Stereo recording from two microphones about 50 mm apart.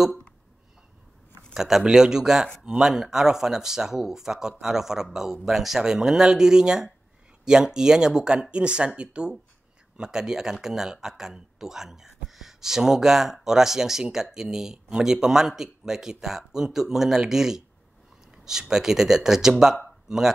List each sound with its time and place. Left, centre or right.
1.5 s speech: centre